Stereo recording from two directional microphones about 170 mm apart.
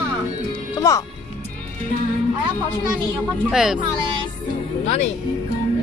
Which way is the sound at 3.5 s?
5° right (ahead or behind).